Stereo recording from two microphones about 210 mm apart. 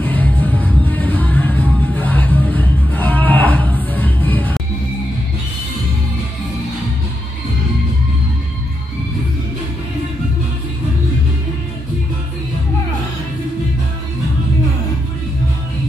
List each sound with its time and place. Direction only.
0.0 s music: 10° left (ahead or behind)